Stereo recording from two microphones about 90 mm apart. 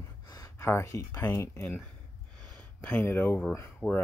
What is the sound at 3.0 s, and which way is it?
Speech, 25° left (ahead or behind).